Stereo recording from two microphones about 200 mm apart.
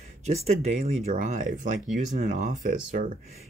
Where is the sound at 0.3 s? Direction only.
40° right (ahead or behind).